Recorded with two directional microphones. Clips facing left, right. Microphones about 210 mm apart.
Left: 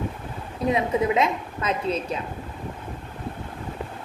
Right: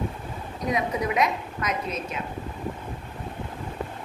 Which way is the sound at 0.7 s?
25° left (ahead or behind).